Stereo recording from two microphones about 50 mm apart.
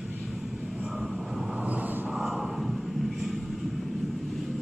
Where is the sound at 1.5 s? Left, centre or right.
Right.